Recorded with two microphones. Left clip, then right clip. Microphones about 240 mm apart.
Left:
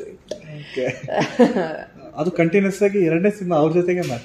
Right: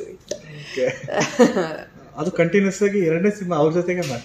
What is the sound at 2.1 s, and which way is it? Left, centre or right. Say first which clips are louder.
Speech: left 1 dB; centre.